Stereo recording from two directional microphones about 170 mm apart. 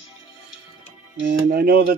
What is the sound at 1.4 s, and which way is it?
Speech, 65° right (ahead or behind).